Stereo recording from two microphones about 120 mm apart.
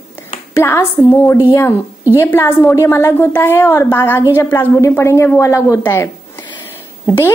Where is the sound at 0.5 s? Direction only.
20° left (ahead or behind).